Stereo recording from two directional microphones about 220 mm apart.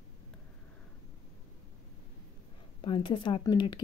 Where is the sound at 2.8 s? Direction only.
20° left (ahead or behind).